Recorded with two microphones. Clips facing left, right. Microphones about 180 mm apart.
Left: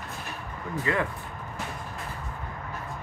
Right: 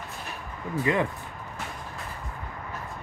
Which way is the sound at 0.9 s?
20° right (ahead or behind).